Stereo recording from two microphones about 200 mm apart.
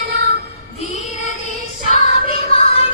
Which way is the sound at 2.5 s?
30° left (ahead or behind).